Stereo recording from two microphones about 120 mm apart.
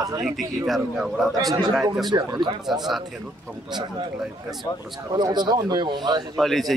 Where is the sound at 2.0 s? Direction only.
35° right (ahead or behind).